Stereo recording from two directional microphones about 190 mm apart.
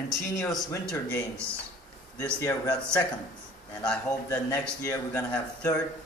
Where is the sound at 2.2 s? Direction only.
15° left (ahead or behind).